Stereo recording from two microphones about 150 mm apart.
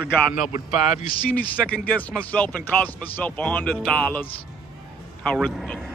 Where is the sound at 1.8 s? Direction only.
10° left (ahead or behind).